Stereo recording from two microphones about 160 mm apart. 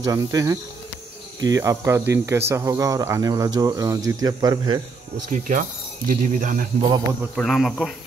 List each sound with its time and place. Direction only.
0.0 s speech: 20° right (ahead or behind)
5.3 s speech: 55° right (ahead or behind)
6.8 s speech: 25° right (ahead or behind)
7.3 s speech: centre (ahead or behind)